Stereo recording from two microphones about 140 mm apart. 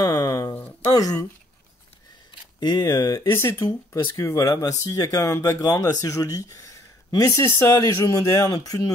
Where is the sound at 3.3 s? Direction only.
20° left (ahead or behind).